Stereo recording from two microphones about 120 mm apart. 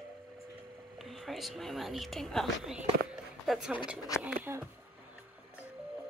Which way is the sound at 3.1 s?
5° right (ahead or behind).